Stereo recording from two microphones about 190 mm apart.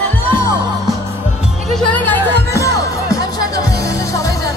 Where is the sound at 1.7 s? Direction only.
10° left (ahead or behind).